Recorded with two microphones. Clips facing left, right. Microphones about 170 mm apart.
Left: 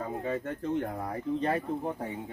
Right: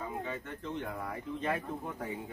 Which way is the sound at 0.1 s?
40° left (ahead or behind).